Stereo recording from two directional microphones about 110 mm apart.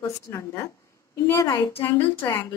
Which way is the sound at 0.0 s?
25° left (ahead or behind).